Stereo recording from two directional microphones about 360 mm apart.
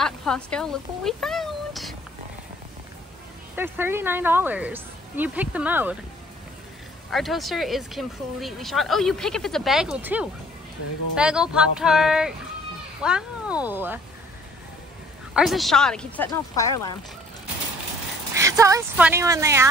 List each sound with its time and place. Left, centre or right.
0.0 s a sound: centre
3.5 s speech: centre
7.1 s speech: centre
15.3 s speech: centre
18.3 s speech: centre